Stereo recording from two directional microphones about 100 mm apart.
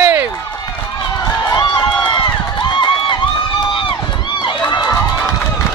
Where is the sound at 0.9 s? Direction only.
45° left (ahead or behind).